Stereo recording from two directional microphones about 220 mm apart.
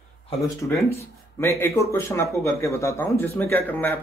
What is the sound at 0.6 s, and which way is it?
Speech, 5° left (ahead or behind).